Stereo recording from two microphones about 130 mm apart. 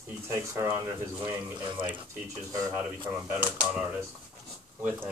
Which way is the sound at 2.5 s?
25° right (ahead or behind).